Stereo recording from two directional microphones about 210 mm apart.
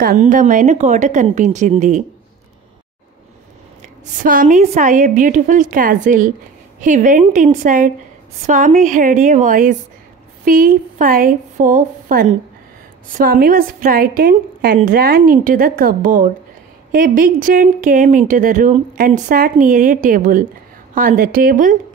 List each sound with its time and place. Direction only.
0.0 s speech: 40° right (ahead or behind)
3.8 s a woman's voice: 35° right (ahead or behind)